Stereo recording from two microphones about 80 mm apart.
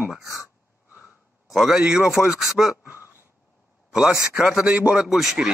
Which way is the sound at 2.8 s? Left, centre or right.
Right.